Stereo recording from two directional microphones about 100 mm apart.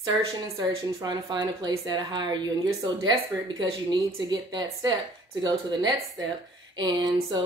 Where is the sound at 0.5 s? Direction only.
45° right (ahead or behind).